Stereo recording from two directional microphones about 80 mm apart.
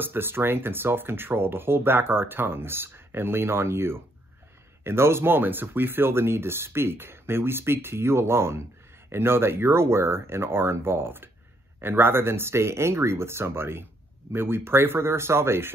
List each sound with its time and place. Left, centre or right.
0.0 s speech: right